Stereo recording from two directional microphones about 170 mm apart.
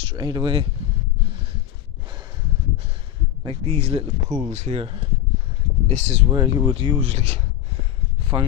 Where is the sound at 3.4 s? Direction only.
35° right (ahead or behind).